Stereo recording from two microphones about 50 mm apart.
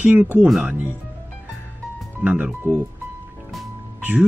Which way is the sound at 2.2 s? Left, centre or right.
Right.